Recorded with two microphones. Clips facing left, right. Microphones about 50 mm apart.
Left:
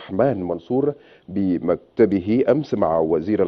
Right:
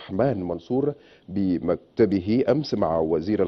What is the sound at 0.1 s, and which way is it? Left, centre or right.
Speech, centre.